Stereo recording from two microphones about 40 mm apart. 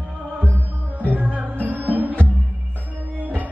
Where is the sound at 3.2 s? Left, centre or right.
Right.